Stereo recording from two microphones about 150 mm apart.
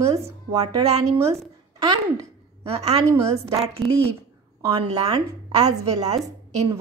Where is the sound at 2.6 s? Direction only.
45° right (ahead or behind).